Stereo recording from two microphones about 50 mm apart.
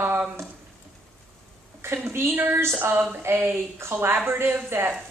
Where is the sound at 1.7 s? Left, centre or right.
Right.